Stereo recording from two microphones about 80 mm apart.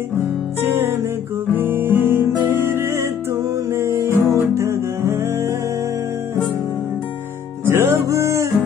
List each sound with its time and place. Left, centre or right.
0.2 s music: right
7.6 s music: right